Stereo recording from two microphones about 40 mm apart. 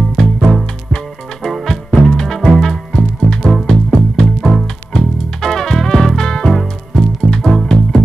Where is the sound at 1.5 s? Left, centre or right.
Centre.